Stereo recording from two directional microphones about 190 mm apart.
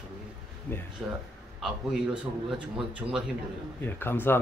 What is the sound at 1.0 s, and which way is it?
Speech, 5° right (ahead or behind).